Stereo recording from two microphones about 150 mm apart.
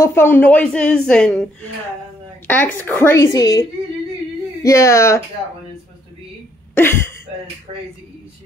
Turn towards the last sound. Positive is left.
turn(degrees=15)  # may be behind; listen again after turning